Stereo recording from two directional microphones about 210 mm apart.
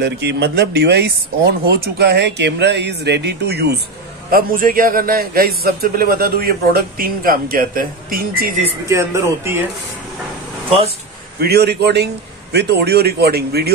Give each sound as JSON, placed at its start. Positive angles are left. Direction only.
{"t": 0.0, "sound": "a man's voice", "side_deg": -55}
{"t": 8.8, "sound": "speech", "side_deg": -15}
{"t": 11.3, "sound": "a man's voice", "side_deg": -50}